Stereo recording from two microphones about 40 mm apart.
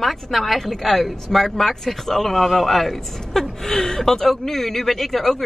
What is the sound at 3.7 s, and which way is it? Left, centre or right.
Speech, centre.